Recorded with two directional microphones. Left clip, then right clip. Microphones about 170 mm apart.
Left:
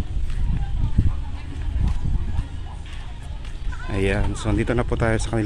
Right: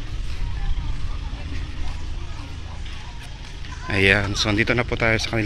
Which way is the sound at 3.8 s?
5° left (ahead or behind).